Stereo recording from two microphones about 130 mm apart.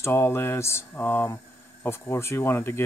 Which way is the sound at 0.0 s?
20° left (ahead or behind).